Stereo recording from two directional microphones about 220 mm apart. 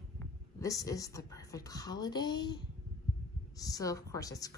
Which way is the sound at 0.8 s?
15° left (ahead or behind).